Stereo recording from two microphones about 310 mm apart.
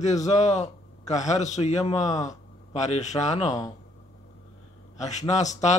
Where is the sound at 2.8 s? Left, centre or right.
Left.